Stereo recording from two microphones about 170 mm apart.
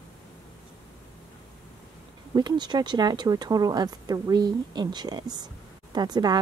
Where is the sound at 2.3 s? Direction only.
25° right (ahead or behind).